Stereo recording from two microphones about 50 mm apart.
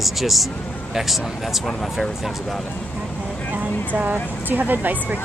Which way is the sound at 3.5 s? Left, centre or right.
Right.